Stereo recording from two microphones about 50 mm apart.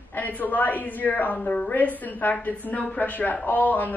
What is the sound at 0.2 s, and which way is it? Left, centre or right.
A woman's voice, left.